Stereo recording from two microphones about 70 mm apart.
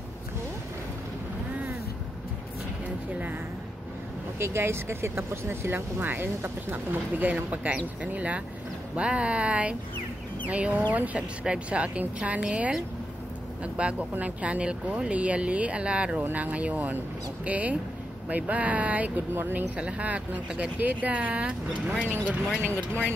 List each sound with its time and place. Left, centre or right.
4.4 s speech: right; by 12.7 s centre
13.7 s speech: centre
19.8 s speech: centre
22.7 s speech: left